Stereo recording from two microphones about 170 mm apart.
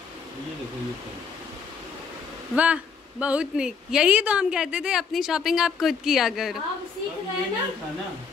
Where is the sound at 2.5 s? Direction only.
5° right (ahead or behind).